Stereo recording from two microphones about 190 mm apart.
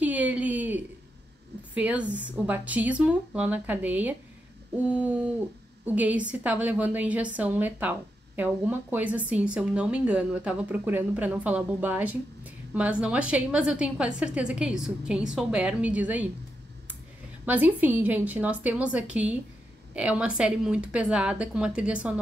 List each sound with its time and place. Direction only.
0.0 s a sound: 10° right (ahead or behind)
1.7 s a woman's voice: 10° right (ahead or behind)
17.5 s a woman's voice: 10° right (ahead or behind)